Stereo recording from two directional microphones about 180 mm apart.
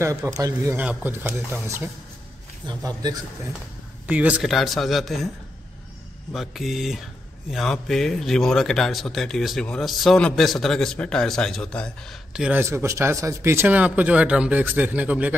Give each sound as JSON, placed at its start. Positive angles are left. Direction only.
{"t": 0.0, "sound": "speech", "side_deg": -15}
{"t": 2.6, "sound": "speech", "side_deg": -20}
{"t": 4.1, "sound": "speech", "side_deg": -5}
{"t": 6.3, "sound": "speech", "side_deg": 0}